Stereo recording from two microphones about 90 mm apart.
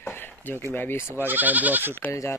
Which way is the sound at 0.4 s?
25° left (ahead or behind).